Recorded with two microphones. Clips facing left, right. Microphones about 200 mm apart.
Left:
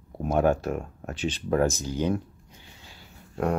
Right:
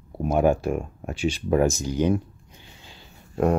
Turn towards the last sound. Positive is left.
turn(degrees=-25)  # may be behind; listen again after turning